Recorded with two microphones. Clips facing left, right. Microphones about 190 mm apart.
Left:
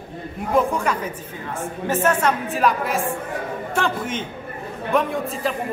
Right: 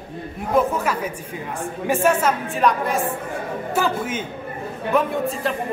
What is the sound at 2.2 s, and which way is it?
A man's voice, centre (ahead or behind).